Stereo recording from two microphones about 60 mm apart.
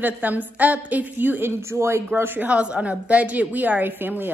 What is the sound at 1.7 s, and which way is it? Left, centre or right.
Speech, right.